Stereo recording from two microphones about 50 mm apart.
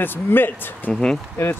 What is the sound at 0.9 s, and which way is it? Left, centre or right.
Speech, centre.